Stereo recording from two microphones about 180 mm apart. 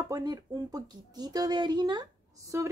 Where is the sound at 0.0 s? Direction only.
20° right (ahead or behind).